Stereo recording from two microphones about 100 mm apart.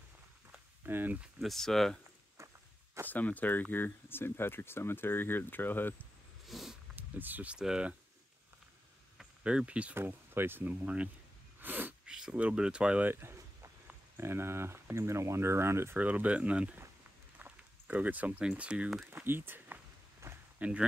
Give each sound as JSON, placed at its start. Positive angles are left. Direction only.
{"t": 0.8, "sound": "speech", "side_deg": -20}
{"t": 1.4, "sound": "speech", "side_deg": 5}
{"t": 2.3, "sound": "walk", "side_deg": -30}
{"t": 3.1, "sound": "speech", "side_deg": 15}
{"t": 6.4, "sound": "cat", "side_deg": 0}
{"t": 7.0, "sound": "speech", "side_deg": -20}
{"t": 9.2, "sound": "speech", "side_deg": -10}
{"t": 11.6, "sound": "sneeze", "side_deg": -15}
{"t": 12.1, "sound": "speech", "side_deg": -5}
{"t": 13.1, "sound": "speech", "side_deg": -25}
{"t": 19.0, "sound": "a sound", "side_deg": -20}
{"t": 20.5, "sound": "speech", "side_deg": -15}